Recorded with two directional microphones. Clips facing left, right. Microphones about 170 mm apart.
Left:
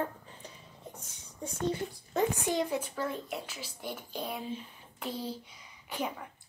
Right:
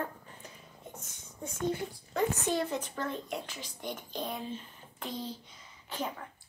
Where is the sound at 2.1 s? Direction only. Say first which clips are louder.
Left 1 dB; 15° left (ahead or behind).